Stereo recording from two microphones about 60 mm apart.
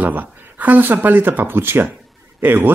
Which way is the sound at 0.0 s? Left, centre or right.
Right.